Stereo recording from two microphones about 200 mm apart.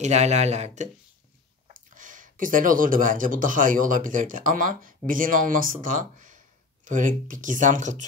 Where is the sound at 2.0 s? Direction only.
40° right (ahead or behind).